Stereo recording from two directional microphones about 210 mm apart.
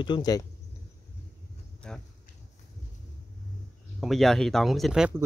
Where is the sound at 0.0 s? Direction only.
20° left (ahead or behind).